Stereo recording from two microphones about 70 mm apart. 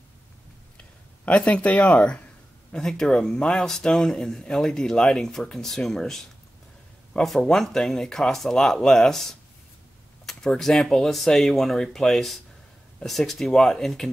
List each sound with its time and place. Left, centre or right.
0.7 s speech: centre
2.7 s speech: centre